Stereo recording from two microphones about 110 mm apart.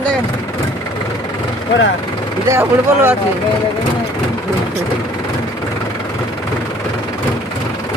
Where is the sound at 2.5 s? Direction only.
20° right (ahead or behind).